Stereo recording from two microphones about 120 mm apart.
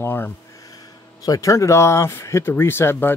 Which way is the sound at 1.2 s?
30° left (ahead or behind).